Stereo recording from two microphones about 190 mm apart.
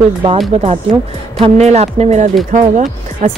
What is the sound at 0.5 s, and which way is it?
Speech, 35° right (ahead or behind).